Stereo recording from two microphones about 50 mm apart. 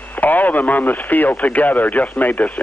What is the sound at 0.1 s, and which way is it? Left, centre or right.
A man's voice, left.